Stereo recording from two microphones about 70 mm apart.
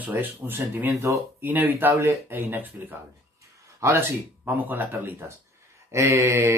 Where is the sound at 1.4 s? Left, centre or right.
Right.